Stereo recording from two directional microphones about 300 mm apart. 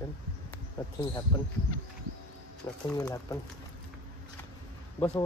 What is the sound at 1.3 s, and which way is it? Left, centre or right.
Speech, centre.